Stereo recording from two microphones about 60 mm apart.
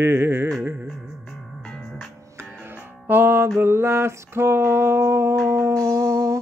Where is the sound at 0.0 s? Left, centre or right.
Right.